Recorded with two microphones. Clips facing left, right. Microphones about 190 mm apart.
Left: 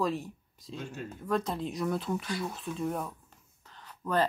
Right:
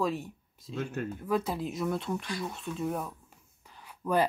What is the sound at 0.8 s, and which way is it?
Speech, 60° right (ahead or behind).